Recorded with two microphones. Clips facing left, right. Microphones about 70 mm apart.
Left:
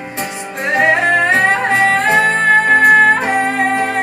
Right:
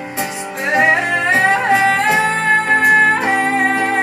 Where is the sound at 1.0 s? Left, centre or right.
Left.